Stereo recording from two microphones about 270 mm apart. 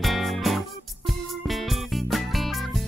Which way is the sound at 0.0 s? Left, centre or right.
Centre.